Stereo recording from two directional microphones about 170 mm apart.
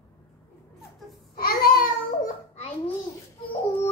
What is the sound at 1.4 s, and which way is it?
Babbling, 60° left (ahead or behind).